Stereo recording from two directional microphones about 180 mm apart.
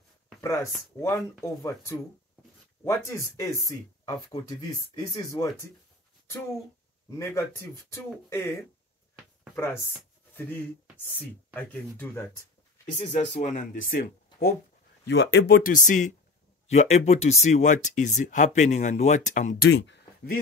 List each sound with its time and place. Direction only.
0.4 s speech: 15° left (ahead or behind)
7.1 s speech: 15° left (ahead or behind)
11.1 s speech: 10° left (ahead or behind)
13.0 s speech: 30° left (ahead or behind); by 14.5 s 50° left (ahead or behind)
15.0 s speech: 70° left (ahead or behind); by 19.5 s 40° left (ahead or behind)
19.6 s speech: 65° left (ahead or behind)